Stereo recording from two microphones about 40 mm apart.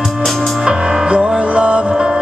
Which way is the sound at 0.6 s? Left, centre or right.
Centre.